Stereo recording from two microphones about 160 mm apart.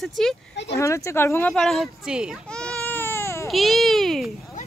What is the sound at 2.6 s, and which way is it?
Baby cry, 5° left (ahead or behind).